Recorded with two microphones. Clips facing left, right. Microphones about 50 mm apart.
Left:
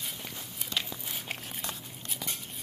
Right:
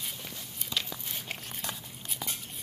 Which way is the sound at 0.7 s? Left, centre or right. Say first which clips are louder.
Even; centre.